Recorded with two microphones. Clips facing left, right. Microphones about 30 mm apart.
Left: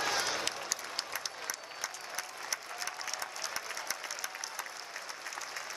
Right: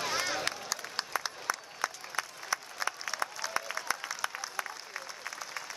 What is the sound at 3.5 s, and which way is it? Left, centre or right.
Applause, right.